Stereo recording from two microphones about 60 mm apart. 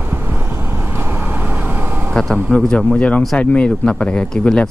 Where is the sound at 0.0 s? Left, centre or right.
Right.